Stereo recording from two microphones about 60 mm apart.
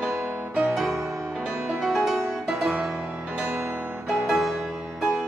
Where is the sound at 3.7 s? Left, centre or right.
Right.